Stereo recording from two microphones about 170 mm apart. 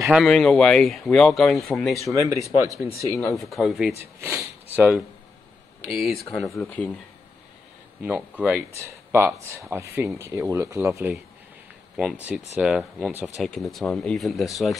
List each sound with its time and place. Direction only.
0.0 s speech: centre (ahead or behind)
2.3 s speech: 20° right (ahead or behind)
3.1 s speech: 20° left (ahead or behind)
3.3 s speech: centre (ahead or behind)
4.2 s speech: 15° right (ahead or behind)
4.7 s speech: 5° right (ahead or behind)
6.5 s speech: 15° left (ahead or behind)
8.0 s speech: 10° right (ahead or behind)